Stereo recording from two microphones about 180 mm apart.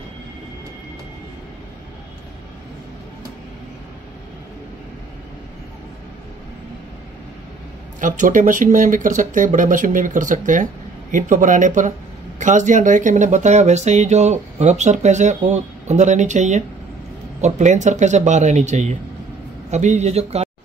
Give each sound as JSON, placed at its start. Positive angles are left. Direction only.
{"t": 8.0, "sound": "speech", "side_deg": -45}